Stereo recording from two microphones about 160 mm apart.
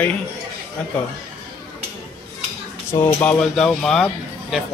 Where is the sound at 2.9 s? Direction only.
15° left (ahead or behind).